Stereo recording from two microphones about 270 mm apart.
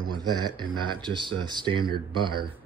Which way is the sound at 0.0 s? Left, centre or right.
Centre.